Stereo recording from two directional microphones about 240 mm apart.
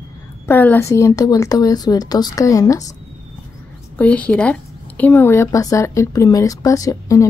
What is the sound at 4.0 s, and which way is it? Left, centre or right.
Speech, centre.